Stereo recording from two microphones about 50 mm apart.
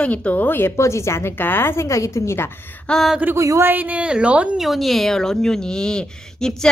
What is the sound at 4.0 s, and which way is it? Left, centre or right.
Speech, right.